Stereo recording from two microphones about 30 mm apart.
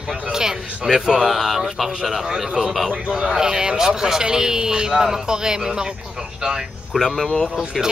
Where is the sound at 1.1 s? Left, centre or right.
Centre; by 5.9 s right.